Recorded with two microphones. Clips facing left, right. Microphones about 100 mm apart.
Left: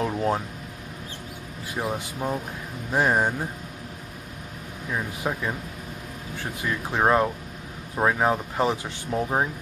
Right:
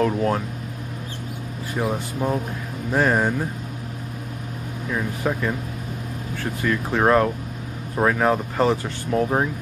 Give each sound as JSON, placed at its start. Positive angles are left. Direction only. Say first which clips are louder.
{"t": 0.0, "sound": "speech", "louder": "right 4 dB", "side_deg": 20}
{"t": 1.8, "sound": "speech", "louder": "right 4 dB", "side_deg": -5}
{"t": 2.9, "sound": "speech", "louder": "right 2 dB", "side_deg": 15}
{"t": 4.9, "sound": "speech", "louder": "right 4 dB", "side_deg": 15}
{"t": 6.6, "sound": "speech", "louder": "right 3 dB", "side_deg": 15}